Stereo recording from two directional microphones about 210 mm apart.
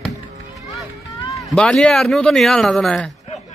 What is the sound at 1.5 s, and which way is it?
Speech, 5° left (ahead or behind).